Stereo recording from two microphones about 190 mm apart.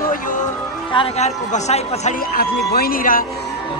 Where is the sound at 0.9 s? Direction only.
30° left (ahead or behind).